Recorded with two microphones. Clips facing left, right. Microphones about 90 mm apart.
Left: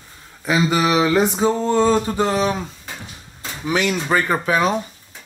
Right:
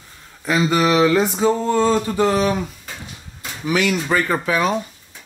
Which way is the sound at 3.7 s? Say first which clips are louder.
Even; 25° left (ahead or behind).